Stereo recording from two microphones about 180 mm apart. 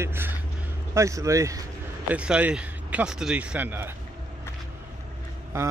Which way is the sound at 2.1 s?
5° right (ahead or behind).